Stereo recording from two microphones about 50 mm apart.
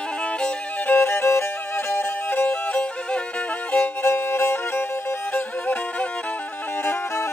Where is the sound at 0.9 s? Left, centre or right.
Left.